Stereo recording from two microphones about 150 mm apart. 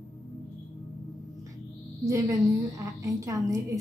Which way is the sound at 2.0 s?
20° right (ahead or behind).